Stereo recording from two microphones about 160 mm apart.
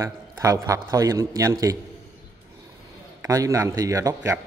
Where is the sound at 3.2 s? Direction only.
20° right (ahead or behind).